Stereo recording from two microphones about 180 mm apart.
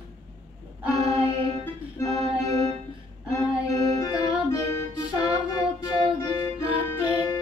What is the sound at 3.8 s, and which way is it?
Music, 20° left (ahead or behind).